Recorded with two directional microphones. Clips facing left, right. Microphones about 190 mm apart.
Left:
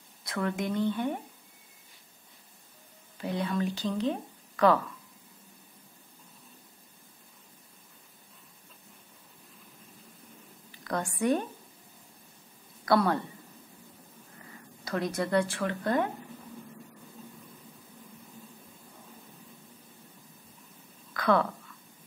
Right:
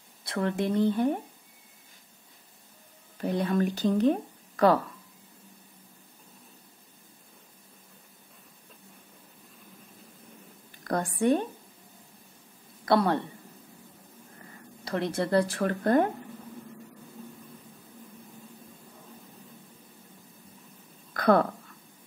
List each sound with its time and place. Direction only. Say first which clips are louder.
0.2 s speech: right 3 dB; 30° right (ahead or behind)
3.2 s speech: right 4 dB; 45° right (ahead or behind)
10.7 s a sound: right 4 dB; 50° right (ahead or behind)
11.0 s a woman's voice: right 3 dB; 25° right (ahead or behind)
12.8 s speech: right 1 dB; 25° right (ahead or behind)
14.9 s speech: right 2 dB; 30° right (ahead or behind); by 16.1 s 45° right (ahead or behind)
21.1 s a sound: right 4 dB; 45° right (ahead or behind)